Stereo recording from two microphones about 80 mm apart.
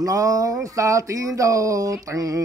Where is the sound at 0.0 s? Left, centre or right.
Right.